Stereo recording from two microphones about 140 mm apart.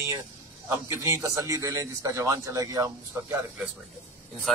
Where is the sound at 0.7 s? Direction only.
20° right (ahead or behind).